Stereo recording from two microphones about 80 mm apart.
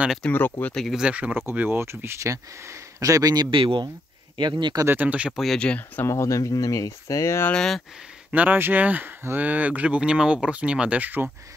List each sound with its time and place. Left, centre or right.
0.3 s speech: left
0.7 s speech: centre
1.0 s a man's voice: centre; by 3.4 s right
3.4 s speech: right
4.4 s speech: right
4.8 s speech: right
5.3 s speech: centre
6.0 s speech: left
7.5 s speech: centre
8.3 s speech: right